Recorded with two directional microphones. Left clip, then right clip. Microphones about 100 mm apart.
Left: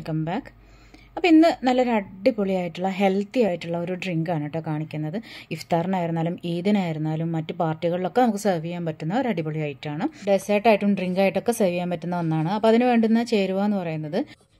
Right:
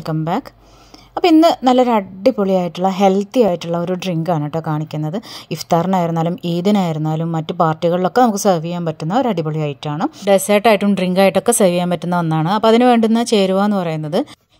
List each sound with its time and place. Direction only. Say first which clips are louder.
0.0 s a woman's voice: right 8 dB; 45° right (ahead or behind)